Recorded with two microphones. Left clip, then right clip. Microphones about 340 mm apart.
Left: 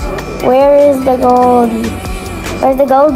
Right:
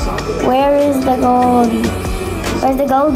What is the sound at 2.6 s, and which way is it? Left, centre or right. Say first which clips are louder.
Speech: left 5 dB; centre.